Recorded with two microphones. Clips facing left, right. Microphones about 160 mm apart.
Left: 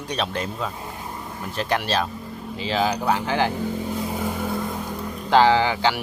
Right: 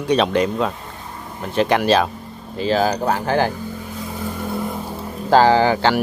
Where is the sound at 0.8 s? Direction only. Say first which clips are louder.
Left 1 dB; 15° left (ahead or behind).